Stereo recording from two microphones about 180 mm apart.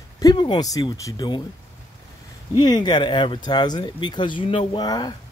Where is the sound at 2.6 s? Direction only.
25° left (ahead or behind).